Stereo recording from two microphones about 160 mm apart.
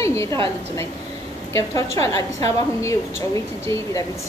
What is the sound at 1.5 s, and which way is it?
A woman's voice, 20° left (ahead or behind).